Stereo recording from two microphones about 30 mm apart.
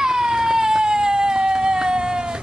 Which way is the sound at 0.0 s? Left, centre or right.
Right.